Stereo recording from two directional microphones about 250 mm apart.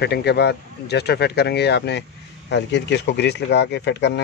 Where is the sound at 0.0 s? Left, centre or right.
Left.